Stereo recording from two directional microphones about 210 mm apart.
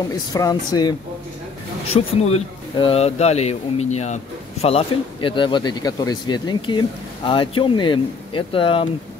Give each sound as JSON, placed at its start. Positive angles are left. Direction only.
{"t": 0.3, "sound": "speech", "side_deg": 20}
{"t": 1.9, "sound": "speech", "side_deg": 30}